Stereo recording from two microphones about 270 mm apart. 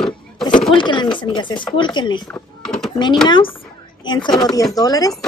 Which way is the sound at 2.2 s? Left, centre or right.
Centre.